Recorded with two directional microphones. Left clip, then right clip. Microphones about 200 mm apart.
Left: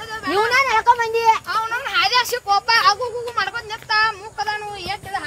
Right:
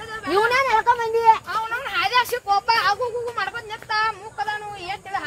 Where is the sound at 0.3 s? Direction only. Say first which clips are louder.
Left 2 dB; 40° right (ahead or behind).